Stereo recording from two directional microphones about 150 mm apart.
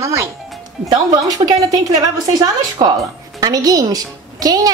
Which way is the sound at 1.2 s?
25° right (ahead or behind).